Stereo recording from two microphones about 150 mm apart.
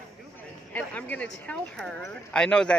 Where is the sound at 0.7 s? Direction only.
10° left (ahead or behind).